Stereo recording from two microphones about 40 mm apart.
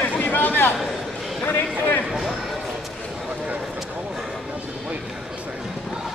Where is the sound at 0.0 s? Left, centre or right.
Left.